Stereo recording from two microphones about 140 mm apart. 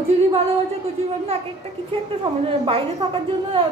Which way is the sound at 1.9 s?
40° right (ahead or behind).